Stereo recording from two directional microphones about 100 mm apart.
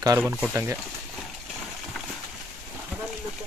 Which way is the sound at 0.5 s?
25° right (ahead or behind).